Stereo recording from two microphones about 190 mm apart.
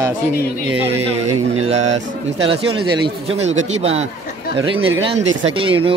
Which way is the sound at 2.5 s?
30° right (ahead or behind).